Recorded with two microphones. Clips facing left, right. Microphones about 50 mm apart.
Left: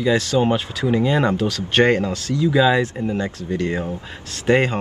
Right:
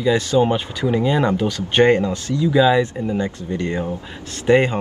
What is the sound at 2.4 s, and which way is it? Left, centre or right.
Speech, centre.